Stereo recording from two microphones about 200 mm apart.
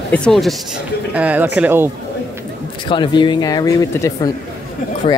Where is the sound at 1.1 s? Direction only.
10° right (ahead or behind).